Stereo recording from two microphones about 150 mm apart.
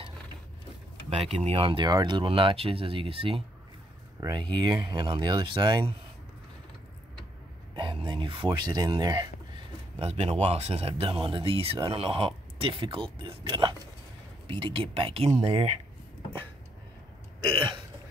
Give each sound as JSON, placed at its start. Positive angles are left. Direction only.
{"t": 1.4, "sound": "speech", "side_deg": -40}
{"t": 7.7, "sound": "speech", "side_deg": -35}
{"t": 9.9, "sound": "speech", "side_deg": -40}
{"t": 13.4, "sound": "a sound", "side_deg": -30}
{"t": 14.5, "sound": "speech", "side_deg": -35}
{"t": 17.5, "sound": "speech", "side_deg": -35}